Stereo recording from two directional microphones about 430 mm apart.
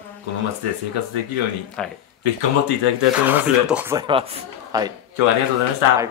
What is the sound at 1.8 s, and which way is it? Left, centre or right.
Speech, centre.